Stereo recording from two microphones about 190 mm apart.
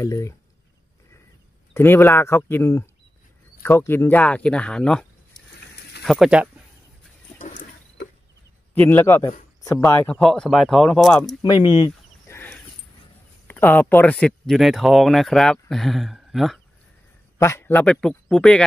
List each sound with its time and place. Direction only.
0.0 s speech: 15° left (ahead or behind)
1.7 s speech: 10° left (ahead or behind)
6.0 s speech: centre (ahead or behind)
7.3 s a sound: 40° left (ahead or behind)
8.7 s speech: 10° left (ahead or behind)
11.4 s chicken: 25° left (ahead or behind)
12.4 s a sound: 10° left (ahead or behind)
13.5 s speech: 10° left (ahead or behind)
17.4 s speech: 15° left (ahead or behind)